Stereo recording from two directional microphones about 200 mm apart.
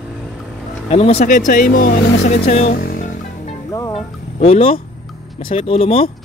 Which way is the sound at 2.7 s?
45° left (ahead or behind).